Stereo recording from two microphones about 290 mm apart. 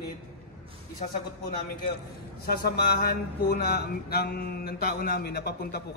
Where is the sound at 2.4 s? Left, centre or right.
Left.